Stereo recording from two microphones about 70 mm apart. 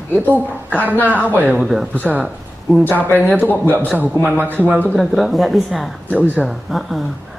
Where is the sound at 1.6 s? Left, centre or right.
Centre.